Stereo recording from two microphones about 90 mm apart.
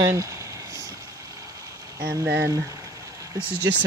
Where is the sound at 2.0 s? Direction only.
20° right (ahead or behind).